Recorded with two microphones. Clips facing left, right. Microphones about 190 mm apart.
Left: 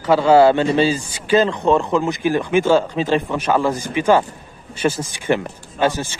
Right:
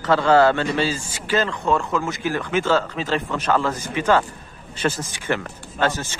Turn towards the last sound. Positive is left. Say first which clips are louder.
# left 4 dB
turn(degrees=10)  # may be behind; listen again after turning